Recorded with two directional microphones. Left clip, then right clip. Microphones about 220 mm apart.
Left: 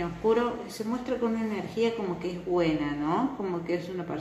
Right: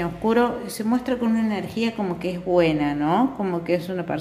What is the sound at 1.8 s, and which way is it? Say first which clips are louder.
Speech: left 1 dB; 50° right (ahead or behind).